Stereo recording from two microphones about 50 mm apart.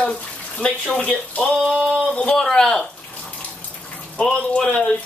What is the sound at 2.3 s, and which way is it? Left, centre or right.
Speech, centre.